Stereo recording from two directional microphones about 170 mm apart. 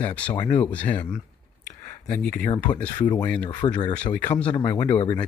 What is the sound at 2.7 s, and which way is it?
Speech, 10° left (ahead or behind).